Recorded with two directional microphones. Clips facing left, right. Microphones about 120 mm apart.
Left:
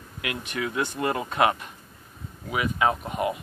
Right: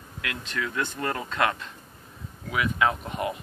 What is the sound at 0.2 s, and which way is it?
Speech, 15° left (ahead or behind).